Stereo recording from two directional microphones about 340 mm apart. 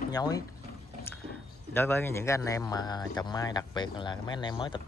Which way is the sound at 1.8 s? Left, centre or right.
Centre.